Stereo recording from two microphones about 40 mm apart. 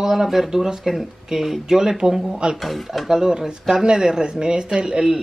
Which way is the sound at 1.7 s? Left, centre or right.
Centre.